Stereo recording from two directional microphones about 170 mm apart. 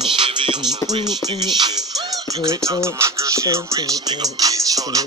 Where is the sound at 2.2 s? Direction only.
20° right (ahead or behind).